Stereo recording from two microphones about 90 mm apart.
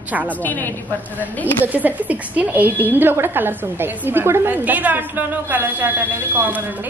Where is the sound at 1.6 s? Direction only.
20° right (ahead or behind).